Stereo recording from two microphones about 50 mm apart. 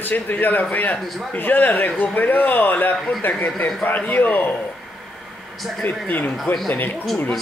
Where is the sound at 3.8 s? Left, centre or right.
Left.